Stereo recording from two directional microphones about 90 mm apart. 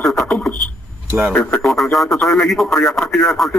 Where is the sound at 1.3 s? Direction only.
15° left (ahead or behind).